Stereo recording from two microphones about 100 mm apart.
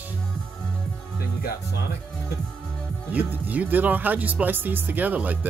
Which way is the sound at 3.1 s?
15° right (ahead or behind).